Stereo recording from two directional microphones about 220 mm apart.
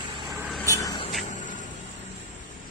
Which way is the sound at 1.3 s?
35° left (ahead or behind).